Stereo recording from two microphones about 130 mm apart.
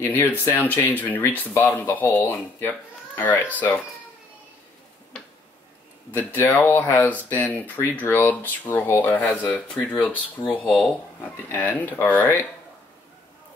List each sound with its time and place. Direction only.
0.0 s speech: 15° left (ahead or behind)
6.5 s speech: 20° left (ahead or behind)